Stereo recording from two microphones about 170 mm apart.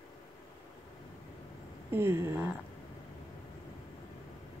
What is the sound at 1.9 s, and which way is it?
Speech, 15° right (ahead or behind).